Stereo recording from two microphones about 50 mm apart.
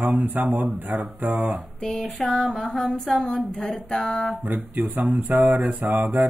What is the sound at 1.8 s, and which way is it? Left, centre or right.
Mantra, centre.